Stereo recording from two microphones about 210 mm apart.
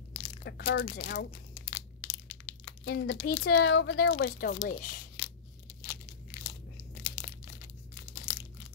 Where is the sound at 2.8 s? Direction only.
55° left (ahead or behind).